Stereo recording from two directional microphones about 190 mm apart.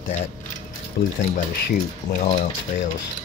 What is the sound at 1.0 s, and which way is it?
Speech, 55° left (ahead or behind).